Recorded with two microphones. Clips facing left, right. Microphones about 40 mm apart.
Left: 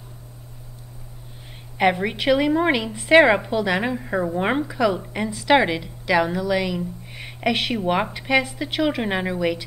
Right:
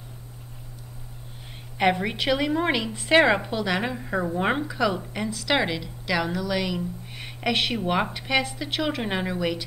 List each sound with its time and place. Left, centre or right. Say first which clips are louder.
1.8 s a woman's voice: left 3 dB; centre